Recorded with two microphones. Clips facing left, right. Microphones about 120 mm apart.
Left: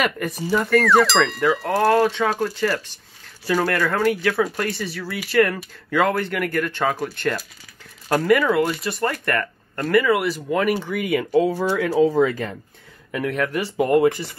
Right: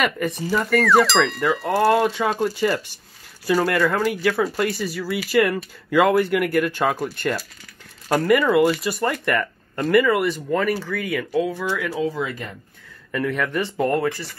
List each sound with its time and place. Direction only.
0.0 s speech: centre (ahead or behind); by 11.4 s 20° left (ahead or behind)
11.4 s speech: 35° left (ahead or behind)
13.1 s speech: 5° left (ahead or behind)
13.8 s speech: 20° left (ahead or behind)